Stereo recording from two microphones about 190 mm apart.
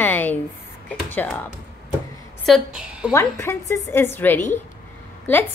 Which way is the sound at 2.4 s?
Centre (ahead or behind).